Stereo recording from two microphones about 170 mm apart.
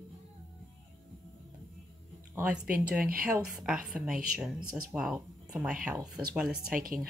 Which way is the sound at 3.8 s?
Centre (ahead or behind).